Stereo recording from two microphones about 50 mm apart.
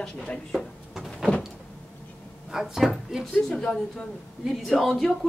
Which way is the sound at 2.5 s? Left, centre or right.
Centre.